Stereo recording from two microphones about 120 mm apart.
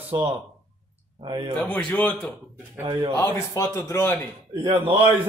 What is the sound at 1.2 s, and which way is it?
Speech, 45° right (ahead or behind).